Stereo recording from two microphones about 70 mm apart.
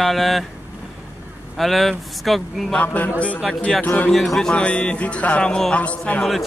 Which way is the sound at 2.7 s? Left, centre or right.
Left.